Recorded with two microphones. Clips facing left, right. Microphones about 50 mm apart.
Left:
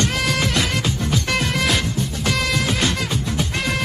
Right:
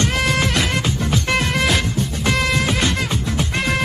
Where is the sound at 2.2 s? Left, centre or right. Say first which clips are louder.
Right 3 dB; centre.